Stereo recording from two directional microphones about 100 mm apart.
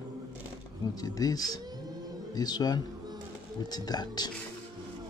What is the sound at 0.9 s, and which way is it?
Speech, 40° left (ahead or behind).